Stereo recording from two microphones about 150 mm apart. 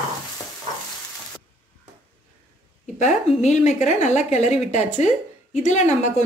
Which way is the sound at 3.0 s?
50° left (ahead or behind).